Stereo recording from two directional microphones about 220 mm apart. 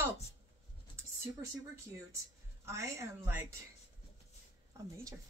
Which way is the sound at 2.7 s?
10° right (ahead or behind).